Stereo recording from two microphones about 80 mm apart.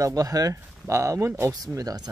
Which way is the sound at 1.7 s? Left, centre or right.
Right.